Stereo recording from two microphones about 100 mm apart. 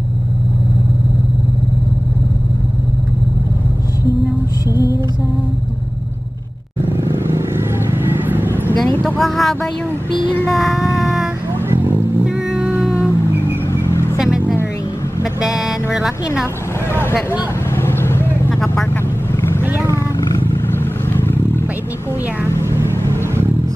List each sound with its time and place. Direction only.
6.9 s vehicle: 25° right (ahead or behind)
9.2 s speech: centre (ahead or behind)
10.5 s music: centre (ahead or behind)
11.7 s vehicle: 25° right (ahead or behind)
12.3 s cat: 15° right (ahead or behind)
13.8 s vehicle: 25° left (ahead or behind)
14.1 s vehicle: 5° right (ahead or behind)
14.4 s vehicle: 20° left (ahead or behind)
15.4 s music: 5° right (ahead or behind)
16.9 s vehicle: 25° left (ahead or behind)
18.5 s vehicle: 5° left (ahead or behind)
21.1 s roaring cats: 20° left (ahead or behind)